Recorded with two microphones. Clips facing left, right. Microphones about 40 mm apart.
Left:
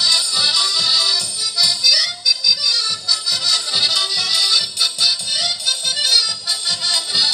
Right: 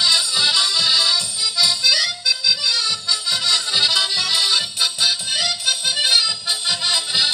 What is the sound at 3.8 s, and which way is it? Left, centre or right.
Music, right.